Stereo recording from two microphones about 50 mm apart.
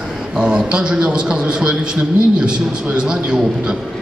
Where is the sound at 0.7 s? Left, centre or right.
Centre.